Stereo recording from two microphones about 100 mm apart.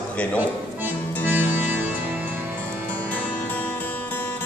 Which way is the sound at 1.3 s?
20° right (ahead or behind).